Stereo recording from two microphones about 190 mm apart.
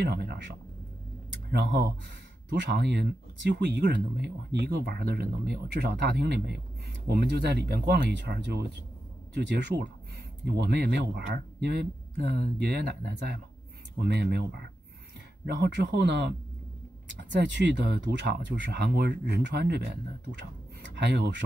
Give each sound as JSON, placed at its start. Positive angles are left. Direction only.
{"t": 0.0, "sound": "speech", "side_deg": -60}